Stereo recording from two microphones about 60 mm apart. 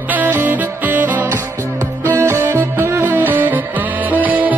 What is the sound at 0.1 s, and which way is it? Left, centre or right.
Music, right.